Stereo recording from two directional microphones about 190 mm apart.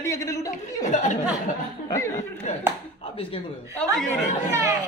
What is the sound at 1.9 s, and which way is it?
Speech, 15° left (ahead or behind).